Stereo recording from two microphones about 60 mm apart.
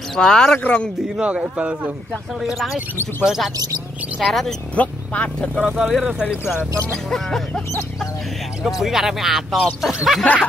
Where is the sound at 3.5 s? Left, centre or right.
Right.